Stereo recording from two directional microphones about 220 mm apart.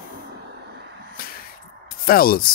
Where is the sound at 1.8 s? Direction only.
40° left (ahead or behind).